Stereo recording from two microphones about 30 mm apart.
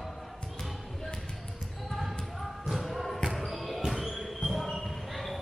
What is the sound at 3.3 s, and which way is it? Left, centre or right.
Basketball bounce, centre.